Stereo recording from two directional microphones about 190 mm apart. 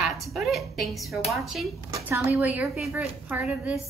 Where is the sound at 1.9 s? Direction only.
15° right (ahead or behind).